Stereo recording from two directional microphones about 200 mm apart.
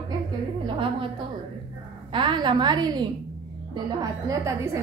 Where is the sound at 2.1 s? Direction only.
25° right (ahead or behind).